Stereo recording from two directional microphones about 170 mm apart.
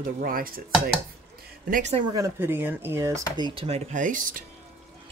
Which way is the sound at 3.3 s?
30° right (ahead or behind).